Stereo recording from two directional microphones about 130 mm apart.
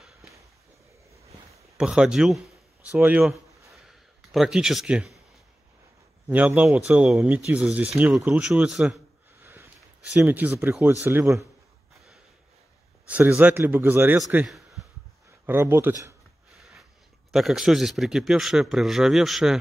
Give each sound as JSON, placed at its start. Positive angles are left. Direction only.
{"t": 1.8, "sound": "speech", "side_deg": -5}
{"t": 3.7, "sound": "a sound", "side_deg": 0}
{"t": 6.2, "sound": "a man's voice", "side_deg": -10}
{"t": 9.4, "sound": "a sound", "side_deg": -20}
{"t": 10.1, "sound": "speech", "side_deg": -15}
{"t": 13.0, "sound": "speech", "side_deg": -10}
{"t": 14.4, "sound": "a sound", "side_deg": 0}
{"t": 15.4, "sound": "speech", "side_deg": -15}
{"t": 17.3, "sound": "a man's voice", "side_deg": 0}